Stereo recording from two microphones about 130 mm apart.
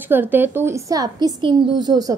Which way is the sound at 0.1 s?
15° right (ahead or behind).